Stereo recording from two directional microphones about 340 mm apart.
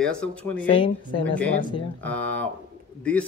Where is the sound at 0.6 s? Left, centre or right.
Centre.